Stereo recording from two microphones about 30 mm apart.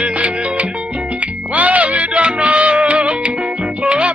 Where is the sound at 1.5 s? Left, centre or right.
Right.